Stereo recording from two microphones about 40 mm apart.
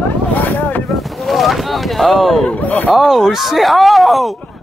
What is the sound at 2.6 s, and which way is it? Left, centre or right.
Speech, left.